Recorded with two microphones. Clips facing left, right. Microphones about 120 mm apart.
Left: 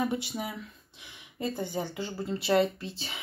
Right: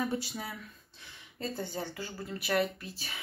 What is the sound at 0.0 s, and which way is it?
Speech, 20° left (ahead or behind).